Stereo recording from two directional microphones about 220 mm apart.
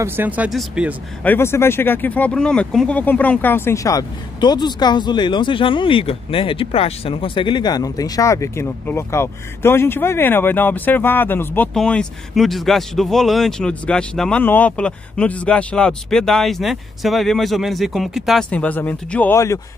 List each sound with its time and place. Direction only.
0.0 s speech: 10° right (ahead or behind)
1.2 s speech: 10° left (ahead or behind)